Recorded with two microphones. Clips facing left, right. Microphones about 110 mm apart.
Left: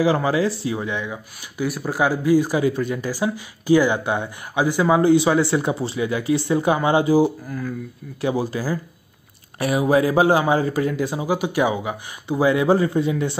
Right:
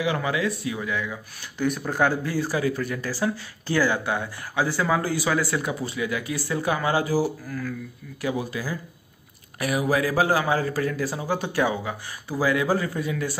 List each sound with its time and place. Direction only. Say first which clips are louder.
0.0 s speech: left 6 dB; 35° left (ahead or behind)
1.6 s speech: left 1 dB; 10° left (ahead or behind); by 13.4 s 25° left (ahead or behind)